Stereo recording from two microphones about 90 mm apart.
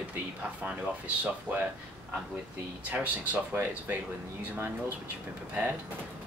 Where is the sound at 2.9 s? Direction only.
15° right (ahead or behind).